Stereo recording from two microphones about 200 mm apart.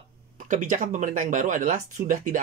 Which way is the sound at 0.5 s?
40° right (ahead or behind).